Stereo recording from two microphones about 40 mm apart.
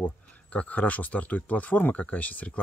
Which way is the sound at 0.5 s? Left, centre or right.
Left.